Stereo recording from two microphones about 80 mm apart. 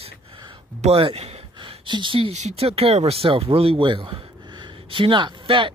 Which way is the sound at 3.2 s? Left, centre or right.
Right.